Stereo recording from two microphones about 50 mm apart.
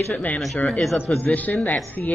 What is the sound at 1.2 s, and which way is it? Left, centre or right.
Speech, left.